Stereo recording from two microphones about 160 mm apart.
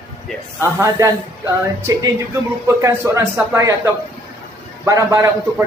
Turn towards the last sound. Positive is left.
turn(degrees=-20)  # may be behind; listen again after turning